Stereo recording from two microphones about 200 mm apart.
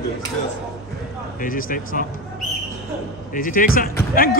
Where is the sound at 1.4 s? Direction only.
45° left (ahead or behind).